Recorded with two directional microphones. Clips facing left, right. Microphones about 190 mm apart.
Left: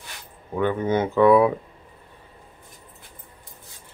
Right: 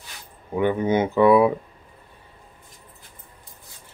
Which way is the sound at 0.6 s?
15° right (ahead or behind).